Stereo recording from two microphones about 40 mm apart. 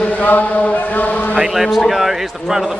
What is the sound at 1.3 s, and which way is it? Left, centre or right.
Speech, centre.